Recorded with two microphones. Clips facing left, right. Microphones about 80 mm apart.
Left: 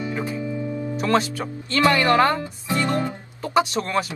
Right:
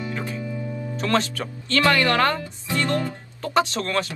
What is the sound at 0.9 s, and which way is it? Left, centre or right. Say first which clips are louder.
Speech: left 1 dB; centre.